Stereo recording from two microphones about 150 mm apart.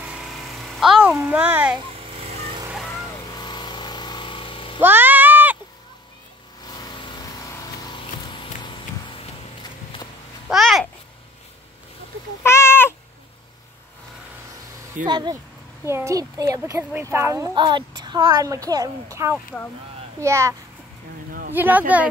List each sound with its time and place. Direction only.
0.0 s a sound: 5° right (ahead or behind)
2.0 s a sound: 40° right (ahead or behind)
2.7 s vehicle: centre (ahead or behind)
3.3 s vehicle: 30° left (ahead or behind)
4.7 s a sound: 15° right (ahead or behind)
6.6 s vehicle: 25° left (ahead or behind)
8.7 s a sound: 35° left (ahead or behind)
10.5 s babbling: centre (ahead or behind)
12.4 s cat: 15° left (ahead or behind)
15.0 s a woman's voice: 30° right (ahead or behind)
15.8 s a woman's voice: 20° right (ahead or behind)
17.6 s a woman's voice: 30° right (ahead or behind)
19.3 s speech: 10° left (ahead or behind)
20.2 s a woman's voice: 20° right (ahead or behind)